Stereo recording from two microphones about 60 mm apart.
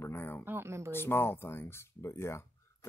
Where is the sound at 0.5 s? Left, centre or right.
Right.